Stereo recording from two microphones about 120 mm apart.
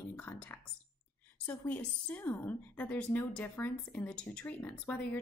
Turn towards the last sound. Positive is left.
turn(degrees=15)  # may be behind; listen again after turning